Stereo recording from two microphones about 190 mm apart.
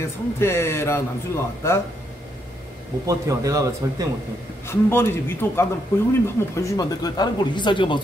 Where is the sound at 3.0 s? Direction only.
15° right (ahead or behind).